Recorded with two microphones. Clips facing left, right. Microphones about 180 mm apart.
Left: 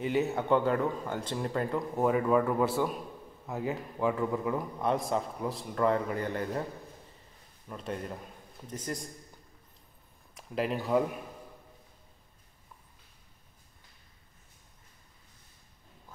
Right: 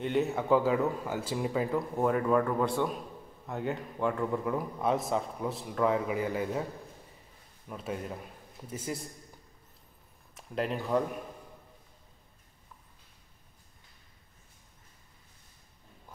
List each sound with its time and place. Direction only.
0.0 s a man's voice: centre (ahead or behind)
7.6 s a man's voice: 5° right (ahead or behind)
10.3 s speech: centre (ahead or behind)